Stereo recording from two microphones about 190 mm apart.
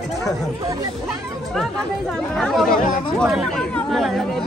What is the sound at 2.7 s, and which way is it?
Speech, 45° left (ahead or behind).